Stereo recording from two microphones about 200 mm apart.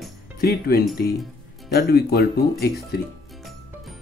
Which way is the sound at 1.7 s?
50° left (ahead or behind).